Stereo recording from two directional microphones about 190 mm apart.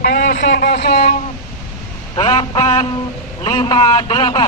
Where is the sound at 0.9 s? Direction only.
40° left (ahead or behind).